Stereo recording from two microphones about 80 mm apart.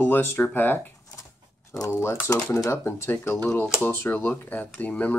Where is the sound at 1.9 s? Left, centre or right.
Left.